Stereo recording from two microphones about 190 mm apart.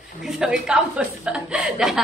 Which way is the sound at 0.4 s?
5° right (ahead or behind).